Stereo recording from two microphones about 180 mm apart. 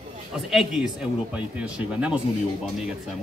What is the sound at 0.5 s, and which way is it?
A man's voice, centre (ahead or behind).